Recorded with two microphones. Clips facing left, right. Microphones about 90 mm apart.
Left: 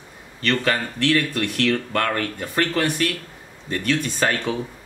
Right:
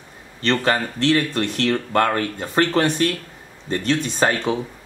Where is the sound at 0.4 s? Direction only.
30° right (ahead or behind).